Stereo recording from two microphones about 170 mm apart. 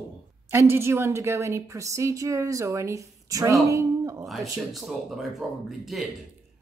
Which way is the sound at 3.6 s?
20° right (ahead or behind).